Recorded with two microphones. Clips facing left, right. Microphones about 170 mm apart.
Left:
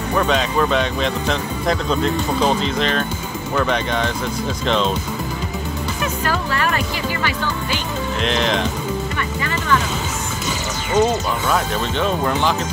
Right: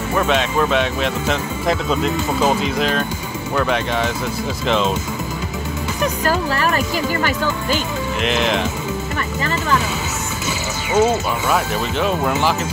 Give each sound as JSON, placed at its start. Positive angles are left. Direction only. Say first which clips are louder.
{"t": 0.1, "sound": "speech", "louder": "even", "side_deg": -5}
{"t": 6.2, "sound": "speech", "louder": "right 2 dB", "side_deg": -40}
{"t": 8.2, "sound": "speech", "louder": "right 1 dB", "side_deg": -5}
{"t": 10.9, "sound": "speech", "louder": "right 1 dB", "side_deg": -5}